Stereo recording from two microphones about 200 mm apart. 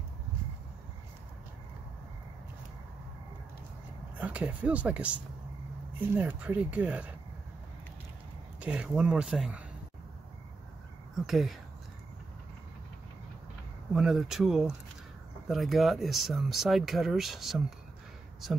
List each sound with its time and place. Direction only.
4.2 s speech: 5° right (ahead or behind)
8.5 s speech: 5° right (ahead or behind)
11.2 s speech: centre (ahead or behind)
13.9 s speech: centre (ahead or behind)